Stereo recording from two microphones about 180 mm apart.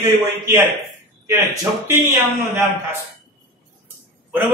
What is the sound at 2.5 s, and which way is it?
Speech, 15° right (ahead or behind).